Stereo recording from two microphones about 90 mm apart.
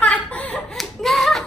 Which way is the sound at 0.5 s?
5° left (ahead or behind).